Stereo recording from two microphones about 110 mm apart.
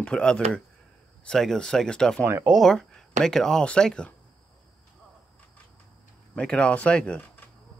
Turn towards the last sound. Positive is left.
turn(degrees=10)  # may be behind; listen again after turning